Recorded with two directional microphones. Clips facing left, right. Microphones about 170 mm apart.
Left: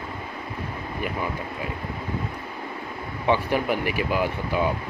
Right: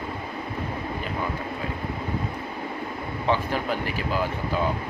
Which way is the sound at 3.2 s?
15° left (ahead or behind).